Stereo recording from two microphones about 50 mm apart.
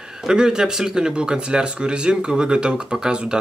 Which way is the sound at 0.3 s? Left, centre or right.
Centre.